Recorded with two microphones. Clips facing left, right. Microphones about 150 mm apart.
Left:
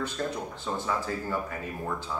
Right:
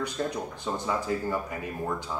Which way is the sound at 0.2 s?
10° right (ahead or behind).